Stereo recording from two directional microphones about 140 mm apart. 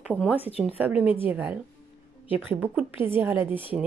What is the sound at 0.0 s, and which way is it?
Speech, 10° right (ahead or behind).